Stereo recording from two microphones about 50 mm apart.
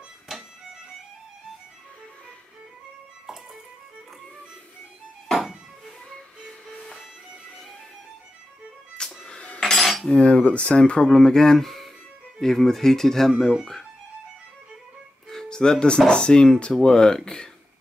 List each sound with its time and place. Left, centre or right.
5.3 s music: centre
8.9 s music: centre
9.6 s cutlery: centre
10.1 s speech: left; by 13.8 s centre
15.2 s music: centre
16.1 s speech: centre